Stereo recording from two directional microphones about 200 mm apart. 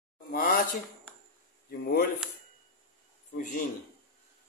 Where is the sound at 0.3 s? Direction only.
45° left (ahead or behind).